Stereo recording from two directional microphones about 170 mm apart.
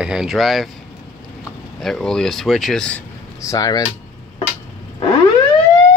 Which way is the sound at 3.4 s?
20° left (ahead or behind).